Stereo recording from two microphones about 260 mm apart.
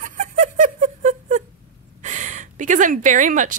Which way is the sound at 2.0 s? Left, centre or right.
Right.